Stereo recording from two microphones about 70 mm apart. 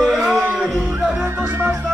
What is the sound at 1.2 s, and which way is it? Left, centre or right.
Music, right.